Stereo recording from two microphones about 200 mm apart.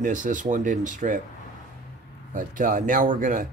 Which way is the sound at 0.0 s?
40° right (ahead or behind).